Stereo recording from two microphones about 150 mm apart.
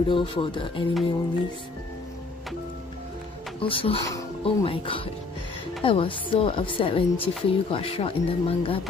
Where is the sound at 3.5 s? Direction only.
35° left (ahead or behind).